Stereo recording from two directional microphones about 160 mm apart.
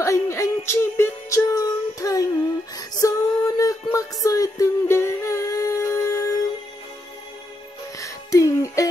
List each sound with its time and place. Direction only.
0.0 s music: 20° left (ahead or behind)
8.0 s music: 20° left (ahead or behind)